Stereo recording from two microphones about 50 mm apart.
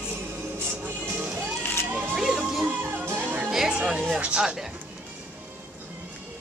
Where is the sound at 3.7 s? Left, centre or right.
Right.